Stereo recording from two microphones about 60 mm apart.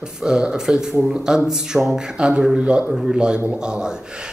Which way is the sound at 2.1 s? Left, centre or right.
Centre.